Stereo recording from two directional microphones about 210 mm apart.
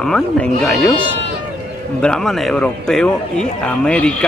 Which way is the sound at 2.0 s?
5° left (ahead or behind).